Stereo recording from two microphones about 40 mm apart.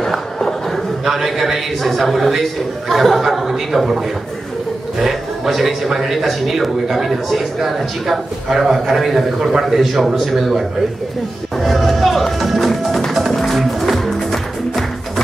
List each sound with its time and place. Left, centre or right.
0.4 s a sound: centre
1.0 s speech: centre
5.0 s speech: centre
11.5 s music: centre